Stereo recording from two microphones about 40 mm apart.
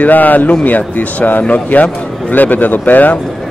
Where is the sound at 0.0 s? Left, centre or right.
Left.